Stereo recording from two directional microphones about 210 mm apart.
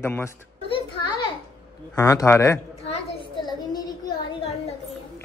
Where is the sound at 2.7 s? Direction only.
30° left (ahead or behind).